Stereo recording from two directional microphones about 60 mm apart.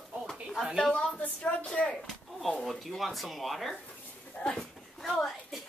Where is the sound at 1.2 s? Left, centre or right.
Left.